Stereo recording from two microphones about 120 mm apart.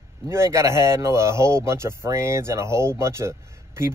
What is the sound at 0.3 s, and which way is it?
A man's voice, 25° right (ahead or behind).